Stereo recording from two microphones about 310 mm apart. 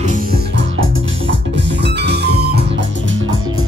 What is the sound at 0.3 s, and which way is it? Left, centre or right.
Music, right.